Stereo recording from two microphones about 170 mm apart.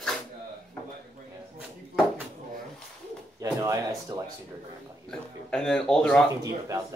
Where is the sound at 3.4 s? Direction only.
20° right (ahead or behind).